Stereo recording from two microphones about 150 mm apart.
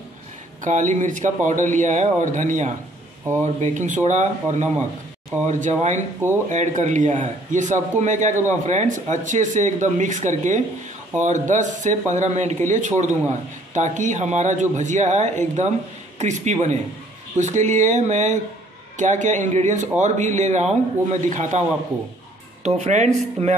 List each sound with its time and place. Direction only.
0.7 s speech: 55° right (ahead or behind)